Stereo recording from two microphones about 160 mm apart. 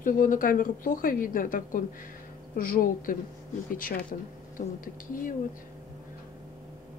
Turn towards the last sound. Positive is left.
turn(degrees=55)  # may be behind; listen again after turning